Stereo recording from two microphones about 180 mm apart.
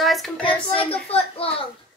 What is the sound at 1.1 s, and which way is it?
Speech, 30° left (ahead or behind).